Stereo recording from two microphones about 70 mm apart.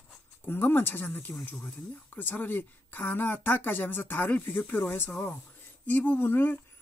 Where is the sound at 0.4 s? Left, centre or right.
Left.